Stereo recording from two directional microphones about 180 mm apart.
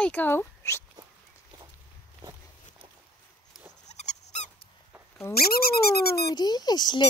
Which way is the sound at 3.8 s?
40° left (ahead or behind).